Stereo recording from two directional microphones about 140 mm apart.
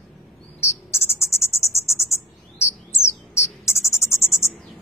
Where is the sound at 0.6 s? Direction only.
20° left (ahead or behind).